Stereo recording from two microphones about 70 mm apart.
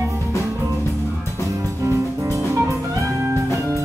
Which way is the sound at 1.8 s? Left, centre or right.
Right.